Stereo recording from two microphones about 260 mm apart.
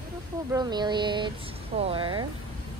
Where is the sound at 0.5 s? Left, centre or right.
Centre.